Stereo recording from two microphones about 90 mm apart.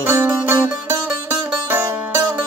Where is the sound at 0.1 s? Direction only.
30° right (ahead or behind).